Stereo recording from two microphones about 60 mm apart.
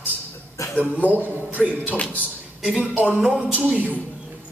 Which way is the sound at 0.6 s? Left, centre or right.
Left.